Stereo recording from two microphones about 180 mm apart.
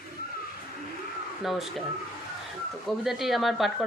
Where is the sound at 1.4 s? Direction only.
Centre (ahead or behind).